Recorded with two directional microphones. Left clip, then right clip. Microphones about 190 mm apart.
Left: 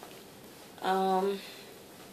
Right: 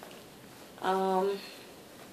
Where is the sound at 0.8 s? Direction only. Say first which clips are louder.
Left 1 dB; 35° right (ahead or behind).